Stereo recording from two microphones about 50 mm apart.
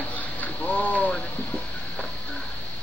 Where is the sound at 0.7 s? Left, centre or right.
Left.